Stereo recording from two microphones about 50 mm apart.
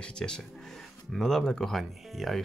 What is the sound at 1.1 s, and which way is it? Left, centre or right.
Speech, centre.